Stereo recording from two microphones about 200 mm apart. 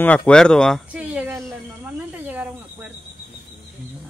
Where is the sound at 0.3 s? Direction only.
5° left (ahead or behind).